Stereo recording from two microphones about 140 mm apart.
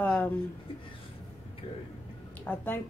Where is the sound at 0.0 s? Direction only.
10° left (ahead or behind).